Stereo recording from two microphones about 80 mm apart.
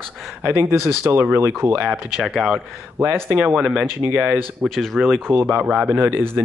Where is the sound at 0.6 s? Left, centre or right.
Right.